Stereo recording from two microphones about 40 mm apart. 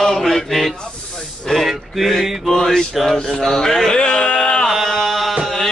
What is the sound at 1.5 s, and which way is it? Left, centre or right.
Male singing, centre.